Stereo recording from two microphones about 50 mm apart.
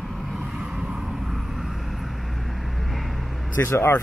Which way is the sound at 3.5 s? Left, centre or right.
Left.